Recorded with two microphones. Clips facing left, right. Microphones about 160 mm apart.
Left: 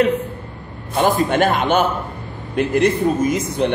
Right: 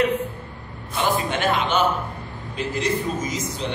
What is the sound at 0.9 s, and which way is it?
A man's voice, 50° left (ahead or behind).